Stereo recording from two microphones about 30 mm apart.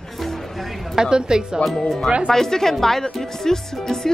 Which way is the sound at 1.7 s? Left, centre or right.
Centre.